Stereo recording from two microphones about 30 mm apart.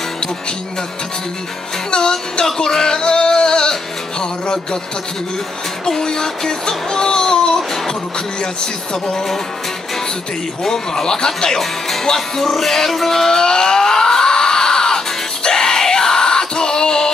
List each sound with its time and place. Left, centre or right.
1.9 s speech: left
2.4 s music: centre
6.2 s music: centre
10.7 s speech: centre
12.4 s music: centre